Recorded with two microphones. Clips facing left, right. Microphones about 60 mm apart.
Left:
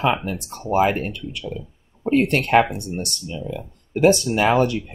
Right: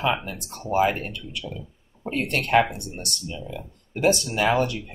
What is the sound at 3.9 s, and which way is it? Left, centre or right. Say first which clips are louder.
Speech: left 6 dB; left.